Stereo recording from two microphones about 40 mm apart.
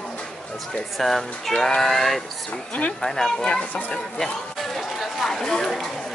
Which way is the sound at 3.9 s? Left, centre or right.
Centre.